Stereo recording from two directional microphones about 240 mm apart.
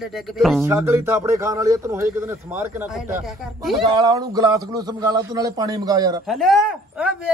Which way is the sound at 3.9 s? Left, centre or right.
Centre.